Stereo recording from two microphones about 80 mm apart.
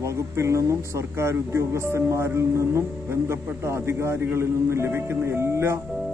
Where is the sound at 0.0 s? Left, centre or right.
Right.